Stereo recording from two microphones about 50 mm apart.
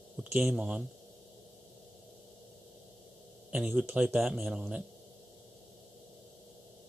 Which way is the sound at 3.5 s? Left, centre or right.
Centre.